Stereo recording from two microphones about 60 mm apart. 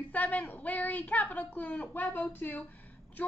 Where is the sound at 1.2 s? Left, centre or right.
Left.